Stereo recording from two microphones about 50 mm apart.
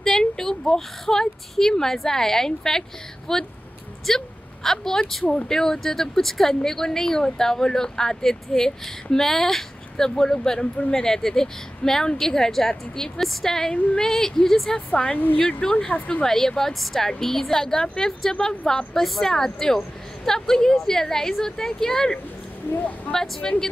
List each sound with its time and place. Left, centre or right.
0.0 s speech: centre
14.9 s speech: left
16.3 s speech: centre